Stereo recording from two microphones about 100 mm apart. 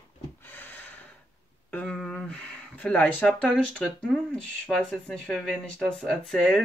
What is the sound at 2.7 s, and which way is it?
Speech, 15° left (ahead or behind).